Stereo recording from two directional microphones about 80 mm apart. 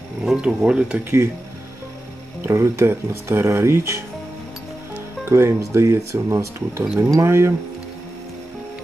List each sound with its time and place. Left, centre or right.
0.2 s speech: centre
2.4 s speech: right
5.2 s speech: right